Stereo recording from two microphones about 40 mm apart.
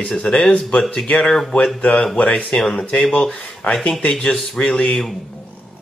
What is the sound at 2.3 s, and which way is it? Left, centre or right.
Speech, left.